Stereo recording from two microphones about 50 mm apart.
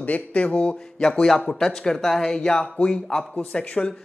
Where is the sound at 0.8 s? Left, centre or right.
Centre.